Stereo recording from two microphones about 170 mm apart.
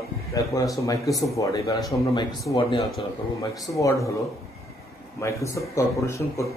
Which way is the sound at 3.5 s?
20° left (ahead or behind).